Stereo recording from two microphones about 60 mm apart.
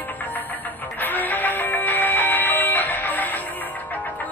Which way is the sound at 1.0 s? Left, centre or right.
Left.